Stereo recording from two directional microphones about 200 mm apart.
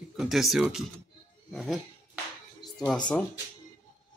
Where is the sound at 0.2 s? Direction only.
Centre (ahead or behind).